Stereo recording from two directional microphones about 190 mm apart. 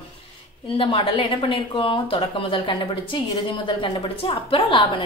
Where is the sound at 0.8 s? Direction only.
30° left (ahead or behind).